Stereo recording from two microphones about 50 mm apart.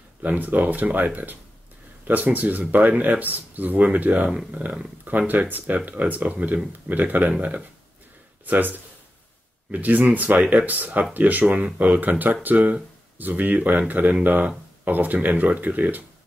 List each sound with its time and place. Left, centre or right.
0.2 s speech: right
8.5 s speech: right